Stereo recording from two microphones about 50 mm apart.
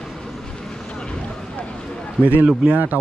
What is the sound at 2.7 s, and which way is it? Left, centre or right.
Speech, right.